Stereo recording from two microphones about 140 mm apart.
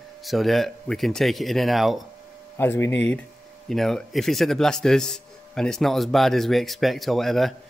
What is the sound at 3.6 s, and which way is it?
Speech, centre (ahead or behind).